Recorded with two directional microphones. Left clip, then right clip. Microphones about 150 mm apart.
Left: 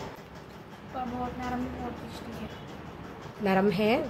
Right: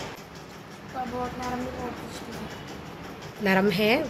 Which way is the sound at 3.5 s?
5° left (ahead or behind).